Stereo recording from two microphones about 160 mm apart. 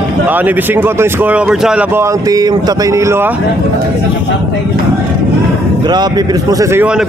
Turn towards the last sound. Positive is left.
turn(degrees=-20)  # may be behind; listen again after turning